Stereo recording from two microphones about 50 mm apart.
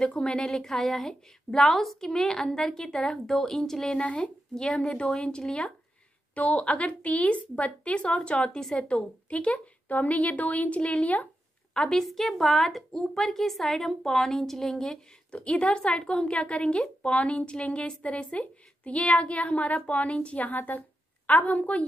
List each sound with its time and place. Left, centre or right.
0.2 s a woman's voice: centre
4.0 s a woman's voice: left
11.7 s a woman's voice: centre
12.0 s a woman's voice: centre
15.4 s a woman's voice: left